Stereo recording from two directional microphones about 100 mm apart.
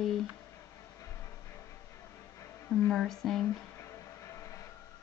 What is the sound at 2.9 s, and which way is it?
Speech, centre (ahead or behind).